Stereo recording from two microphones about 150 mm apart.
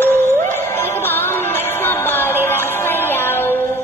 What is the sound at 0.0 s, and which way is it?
Music, 15° left (ahead or behind).